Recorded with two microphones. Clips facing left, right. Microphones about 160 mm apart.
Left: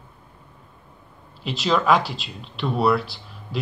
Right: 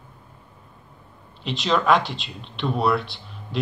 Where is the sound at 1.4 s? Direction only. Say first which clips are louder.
Left 1 dB; centre (ahead or behind).